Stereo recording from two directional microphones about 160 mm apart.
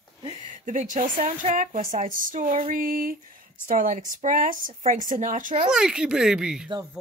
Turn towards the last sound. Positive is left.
turn(degrees=-5)  # may be behind; listen again after turning